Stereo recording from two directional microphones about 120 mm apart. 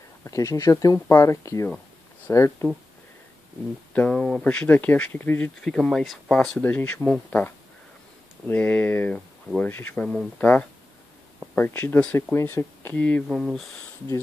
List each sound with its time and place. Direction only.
0.2 s speech: 25° left (ahead or behind)
3.9 s speech: 10° left (ahead or behind)
13.3 s speech: 5° right (ahead or behind)